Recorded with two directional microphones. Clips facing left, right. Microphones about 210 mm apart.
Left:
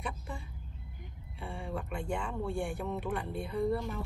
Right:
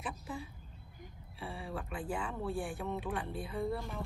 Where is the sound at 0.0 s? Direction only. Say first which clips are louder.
Even; 5° right (ahead or behind).